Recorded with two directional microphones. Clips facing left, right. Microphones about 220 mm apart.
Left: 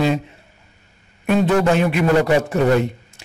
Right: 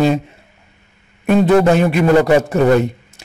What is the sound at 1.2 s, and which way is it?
Speech, 40° right (ahead or behind).